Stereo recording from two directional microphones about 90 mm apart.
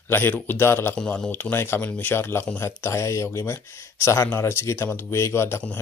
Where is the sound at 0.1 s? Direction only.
25° left (ahead or behind).